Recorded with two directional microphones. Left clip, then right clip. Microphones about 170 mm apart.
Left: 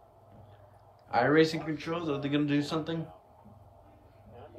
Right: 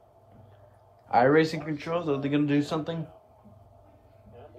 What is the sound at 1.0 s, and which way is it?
A man's voice, 35° right (ahead or behind).